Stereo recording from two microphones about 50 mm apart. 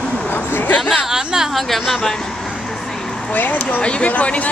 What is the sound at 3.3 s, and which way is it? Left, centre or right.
Speech, left.